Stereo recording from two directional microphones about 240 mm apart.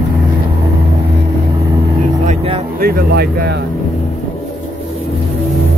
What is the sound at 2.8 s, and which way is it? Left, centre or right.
Speech, right.